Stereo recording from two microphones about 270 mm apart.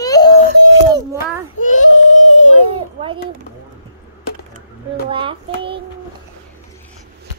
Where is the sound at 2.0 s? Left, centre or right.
Left.